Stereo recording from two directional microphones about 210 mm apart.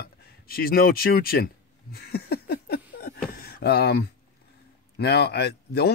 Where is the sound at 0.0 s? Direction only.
45° left (ahead or behind).